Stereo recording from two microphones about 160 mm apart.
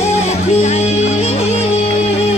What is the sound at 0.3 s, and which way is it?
Music, 45° left (ahead or behind).